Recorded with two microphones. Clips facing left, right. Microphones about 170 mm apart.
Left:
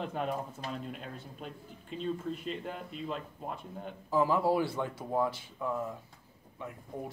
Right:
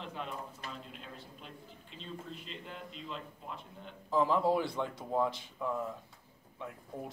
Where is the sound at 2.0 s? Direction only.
50° left (ahead or behind).